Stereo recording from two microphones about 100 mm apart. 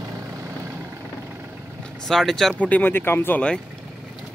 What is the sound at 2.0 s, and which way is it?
Speech, 5° left (ahead or behind).